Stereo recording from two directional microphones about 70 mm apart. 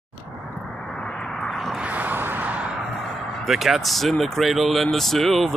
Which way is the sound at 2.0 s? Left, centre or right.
Right.